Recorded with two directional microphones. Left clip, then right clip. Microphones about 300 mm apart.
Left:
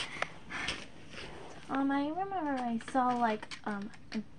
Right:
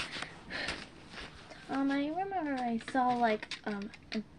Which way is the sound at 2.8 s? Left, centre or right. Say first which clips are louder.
Right 1 dB; centre.